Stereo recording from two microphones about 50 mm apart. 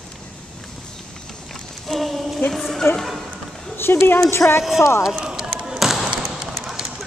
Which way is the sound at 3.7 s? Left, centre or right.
Left.